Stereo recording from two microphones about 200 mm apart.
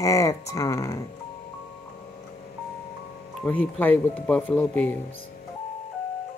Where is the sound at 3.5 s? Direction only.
10° left (ahead or behind).